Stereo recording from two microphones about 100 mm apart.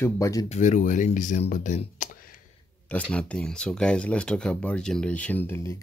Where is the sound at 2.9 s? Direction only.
10° left (ahead or behind).